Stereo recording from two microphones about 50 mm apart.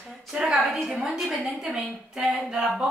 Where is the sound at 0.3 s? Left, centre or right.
Centre.